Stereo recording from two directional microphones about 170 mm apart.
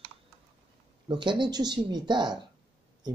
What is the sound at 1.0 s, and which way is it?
Speech, 30° right (ahead or behind).